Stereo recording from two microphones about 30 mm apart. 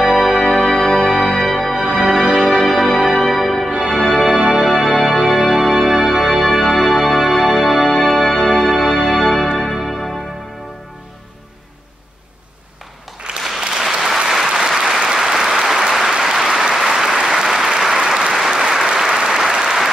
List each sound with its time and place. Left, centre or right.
0.0 s music: centre
4.3 s music: centre
4.6 s music: centre
13.6 s applause: right